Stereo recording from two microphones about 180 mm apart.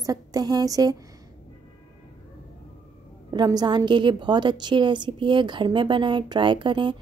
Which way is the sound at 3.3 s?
20° right (ahead or behind).